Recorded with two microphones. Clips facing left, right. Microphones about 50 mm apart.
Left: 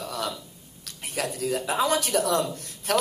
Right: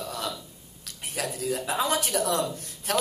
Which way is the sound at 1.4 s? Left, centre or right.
Left.